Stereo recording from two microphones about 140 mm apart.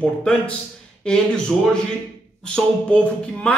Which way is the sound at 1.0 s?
5° left (ahead or behind).